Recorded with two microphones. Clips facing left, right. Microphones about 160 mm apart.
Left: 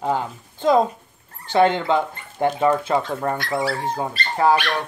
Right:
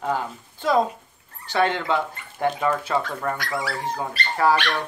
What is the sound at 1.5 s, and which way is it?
Speech, 25° left (ahead or behind).